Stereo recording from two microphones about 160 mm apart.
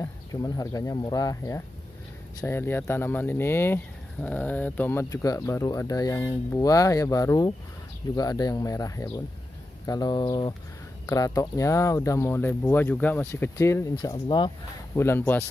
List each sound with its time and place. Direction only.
0.0 s speech: 20° left (ahead or behind)
15.0 s speech: 15° left (ahead or behind)